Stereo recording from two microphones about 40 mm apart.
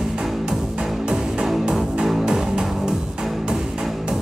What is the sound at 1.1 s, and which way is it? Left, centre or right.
Music, centre.